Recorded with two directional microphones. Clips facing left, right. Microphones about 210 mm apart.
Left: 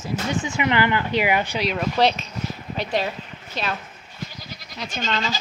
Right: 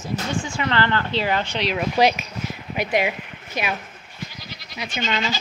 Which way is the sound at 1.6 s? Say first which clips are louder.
Right 3 dB; 5° right (ahead or behind).